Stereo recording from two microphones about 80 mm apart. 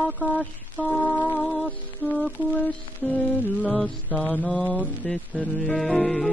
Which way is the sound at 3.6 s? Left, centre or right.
Centre.